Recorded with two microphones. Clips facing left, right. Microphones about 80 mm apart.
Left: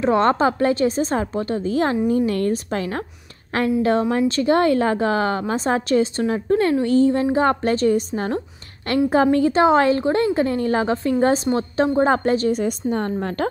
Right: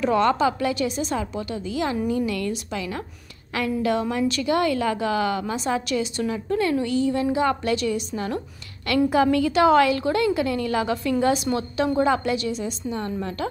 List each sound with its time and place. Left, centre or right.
0.0 s a woman's voice: left